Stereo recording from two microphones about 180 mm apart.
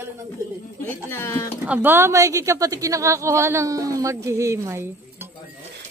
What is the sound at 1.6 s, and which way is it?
A woman's voice, 10° right (ahead or behind).